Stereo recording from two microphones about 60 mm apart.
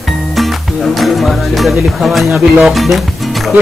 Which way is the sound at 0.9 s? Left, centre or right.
Centre.